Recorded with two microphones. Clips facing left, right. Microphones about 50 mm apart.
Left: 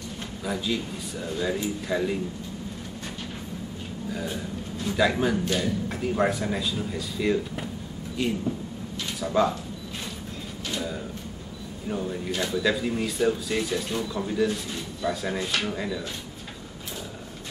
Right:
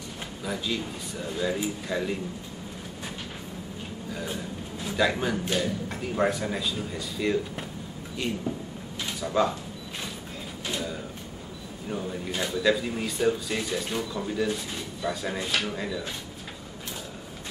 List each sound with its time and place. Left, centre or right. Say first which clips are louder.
0.4 s speech: left 2 dB; centre
4.1 s a man's voice: left 2 dB; centre
11.9 s speech: left 2 dB; centre